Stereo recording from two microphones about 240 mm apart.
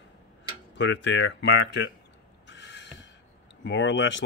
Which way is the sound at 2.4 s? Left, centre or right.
Left.